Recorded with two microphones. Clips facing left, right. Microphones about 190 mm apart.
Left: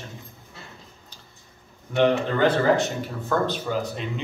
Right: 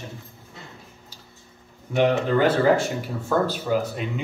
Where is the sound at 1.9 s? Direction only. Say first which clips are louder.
Right 1 dB; 10° right (ahead or behind).